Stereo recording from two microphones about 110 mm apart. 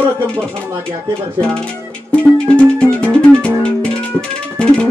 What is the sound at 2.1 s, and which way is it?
Music, 10° left (ahead or behind).